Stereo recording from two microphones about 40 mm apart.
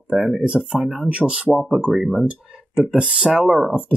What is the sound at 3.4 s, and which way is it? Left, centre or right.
Speech, centre.